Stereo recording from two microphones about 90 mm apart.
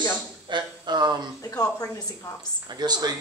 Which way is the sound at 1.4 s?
40° left (ahead or behind).